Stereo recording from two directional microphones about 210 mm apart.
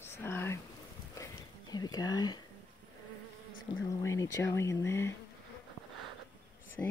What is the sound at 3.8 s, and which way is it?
Speech, 15° left (ahead or behind).